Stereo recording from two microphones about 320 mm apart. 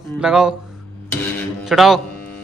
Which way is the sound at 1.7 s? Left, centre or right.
Centre.